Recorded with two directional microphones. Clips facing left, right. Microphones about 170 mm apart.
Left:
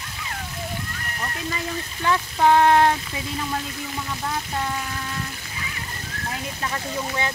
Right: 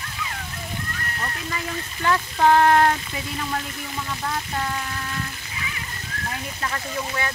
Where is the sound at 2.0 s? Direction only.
15° left (ahead or behind).